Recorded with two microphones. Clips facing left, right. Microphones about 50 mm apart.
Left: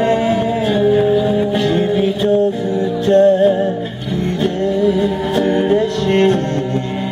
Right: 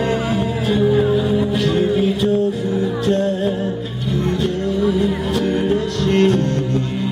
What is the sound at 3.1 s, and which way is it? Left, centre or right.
Music, left.